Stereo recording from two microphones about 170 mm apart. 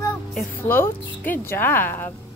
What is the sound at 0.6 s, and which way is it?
Speech, 15° left (ahead or behind).